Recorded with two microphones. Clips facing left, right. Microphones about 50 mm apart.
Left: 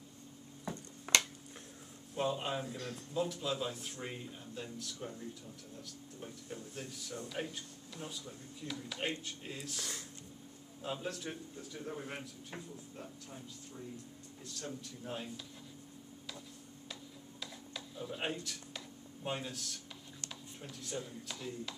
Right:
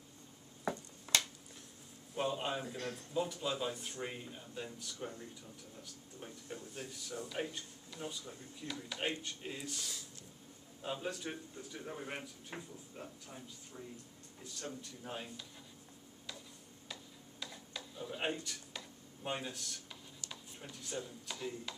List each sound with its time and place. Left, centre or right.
1.1 s a sound: left
2.1 s speech: centre
2.7 s a man's voice: right
3.2 s speech: centre
6.2 s speech: centre
10.8 s speech: centre
16.9 s a sound: centre
21.3 s speech: centre